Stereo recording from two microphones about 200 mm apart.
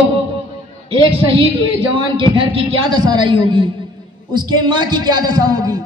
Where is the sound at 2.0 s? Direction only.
25° right (ahead or behind).